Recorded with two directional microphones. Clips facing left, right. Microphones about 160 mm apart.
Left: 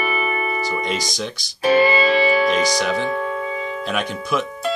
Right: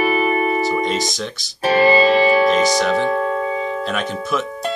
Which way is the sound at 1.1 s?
Centre (ahead or behind).